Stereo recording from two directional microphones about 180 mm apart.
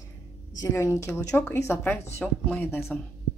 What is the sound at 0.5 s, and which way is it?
A woman's voice, 15° left (ahead or behind).